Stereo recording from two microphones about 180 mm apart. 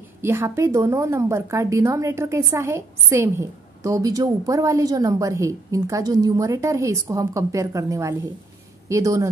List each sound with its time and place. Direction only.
0.2 s a woman's voice: 15° right (ahead or behind)